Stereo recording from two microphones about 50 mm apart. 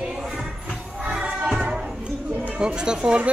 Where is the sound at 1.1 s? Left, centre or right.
Centre.